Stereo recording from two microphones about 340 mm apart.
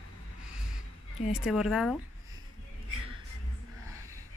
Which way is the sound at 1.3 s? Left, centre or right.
Centre.